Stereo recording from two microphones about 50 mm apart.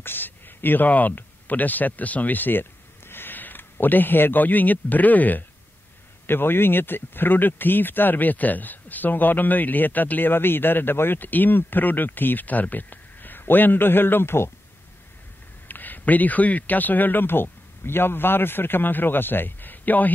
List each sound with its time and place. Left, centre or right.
0.0 s a sound: left
0.8 s speech: left
6.2 s speech: left
15.7 s a man's voice: left